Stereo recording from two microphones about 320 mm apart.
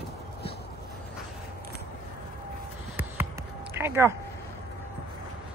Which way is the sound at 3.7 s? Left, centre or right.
Centre.